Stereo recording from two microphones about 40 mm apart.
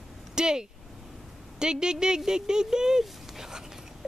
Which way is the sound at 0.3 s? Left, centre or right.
Centre.